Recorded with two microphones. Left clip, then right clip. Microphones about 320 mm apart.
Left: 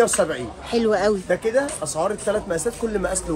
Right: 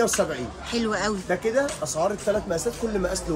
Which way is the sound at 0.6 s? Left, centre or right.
Centre.